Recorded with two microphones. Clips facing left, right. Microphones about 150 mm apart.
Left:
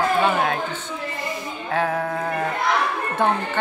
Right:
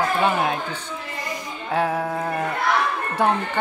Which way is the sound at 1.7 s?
10° right (ahead or behind).